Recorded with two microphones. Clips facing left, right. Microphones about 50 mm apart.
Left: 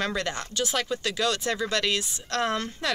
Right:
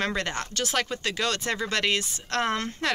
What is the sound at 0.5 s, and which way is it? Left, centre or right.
Speech, right.